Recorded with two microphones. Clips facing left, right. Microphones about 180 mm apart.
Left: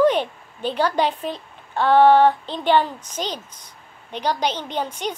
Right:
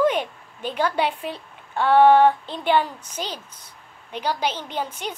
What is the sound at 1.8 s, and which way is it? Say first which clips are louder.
Speech: left 1 dB; 10° right (ahead or behind).